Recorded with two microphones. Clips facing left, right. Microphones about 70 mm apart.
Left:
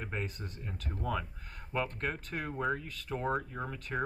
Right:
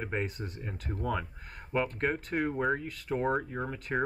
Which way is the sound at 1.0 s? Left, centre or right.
Centre.